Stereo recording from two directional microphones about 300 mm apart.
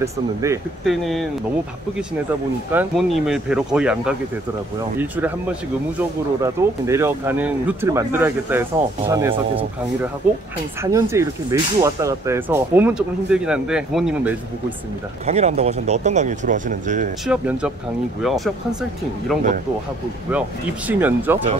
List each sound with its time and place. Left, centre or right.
0.0 s speech: centre
2.7 s speech: centre
10.8 s speech: centre
15.2 s speech: right
17.3 s speech: centre